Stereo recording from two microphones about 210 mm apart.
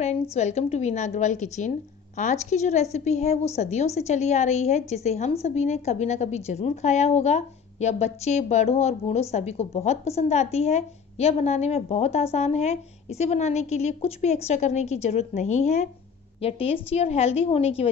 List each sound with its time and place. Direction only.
0.0 s a woman's voice: 30° left (ahead or behind)